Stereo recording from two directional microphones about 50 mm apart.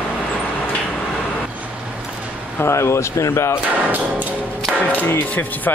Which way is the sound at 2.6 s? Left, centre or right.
Left.